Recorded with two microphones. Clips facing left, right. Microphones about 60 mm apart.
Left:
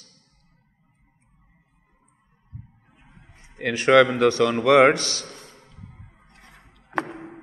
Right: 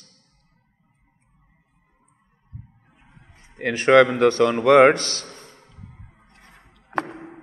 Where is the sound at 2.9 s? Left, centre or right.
Right.